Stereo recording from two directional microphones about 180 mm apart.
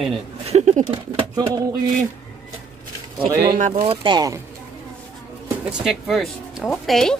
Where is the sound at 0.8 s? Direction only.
25° right (ahead or behind).